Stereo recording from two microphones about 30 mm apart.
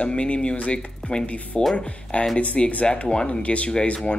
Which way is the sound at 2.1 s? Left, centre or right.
Left.